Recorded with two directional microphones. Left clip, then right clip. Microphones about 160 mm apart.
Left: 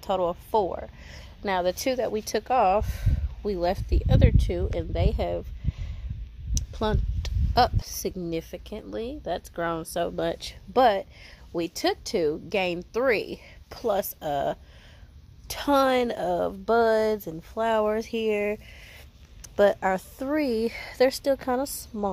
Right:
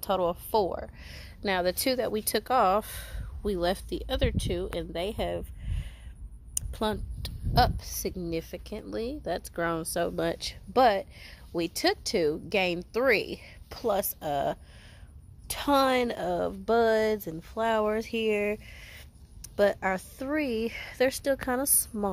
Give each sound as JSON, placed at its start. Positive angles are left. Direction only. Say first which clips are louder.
{"t": 0.0, "sound": "a woman's voice", "louder": "left 2 dB", "side_deg": 5}
{"t": 8.4, "sound": "a woman's voice", "louder": "left 2 dB", "side_deg": 15}